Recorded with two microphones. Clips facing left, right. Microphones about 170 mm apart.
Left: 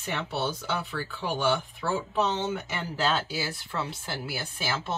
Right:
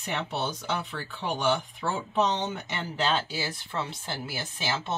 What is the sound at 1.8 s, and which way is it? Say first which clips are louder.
Speech: left 2 dB; 15° right (ahead or behind).